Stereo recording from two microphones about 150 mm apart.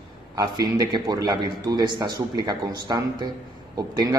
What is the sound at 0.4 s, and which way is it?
A man's voice, 25° right (ahead or behind).